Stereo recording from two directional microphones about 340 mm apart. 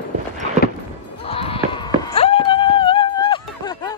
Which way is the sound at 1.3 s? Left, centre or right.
Centre.